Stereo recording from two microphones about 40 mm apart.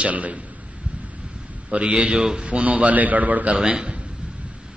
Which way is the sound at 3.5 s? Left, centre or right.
Right.